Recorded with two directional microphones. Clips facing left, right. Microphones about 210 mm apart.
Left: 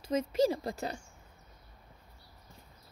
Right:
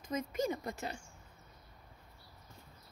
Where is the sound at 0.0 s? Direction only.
30° left (ahead or behind).